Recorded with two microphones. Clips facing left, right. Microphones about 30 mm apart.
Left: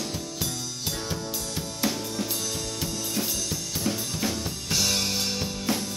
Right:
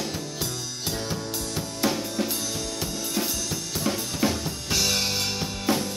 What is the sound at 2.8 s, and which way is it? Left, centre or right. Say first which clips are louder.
Drum kit: right 2 dB; centre.